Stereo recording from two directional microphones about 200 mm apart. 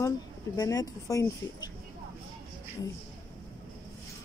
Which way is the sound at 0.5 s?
20° left (ahead or behind).